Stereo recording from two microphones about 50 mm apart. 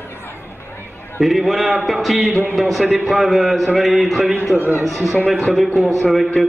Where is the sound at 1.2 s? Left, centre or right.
Centre.